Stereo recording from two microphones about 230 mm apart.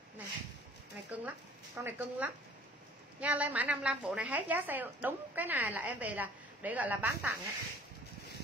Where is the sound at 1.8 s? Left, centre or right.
Centre.